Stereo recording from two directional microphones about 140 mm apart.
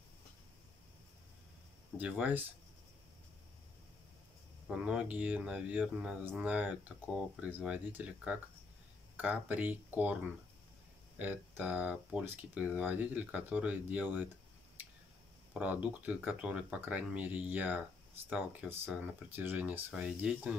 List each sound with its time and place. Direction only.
2.0 s speech: 10° right (ahead or behind)
4.6 s speech: 10° right (ahead or behind)
11.1 s speech: 10° right (ahead or behind)
15.5 s speech: 10° right (ahead or behind)